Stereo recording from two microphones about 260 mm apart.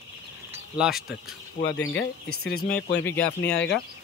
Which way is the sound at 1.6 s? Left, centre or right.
Left.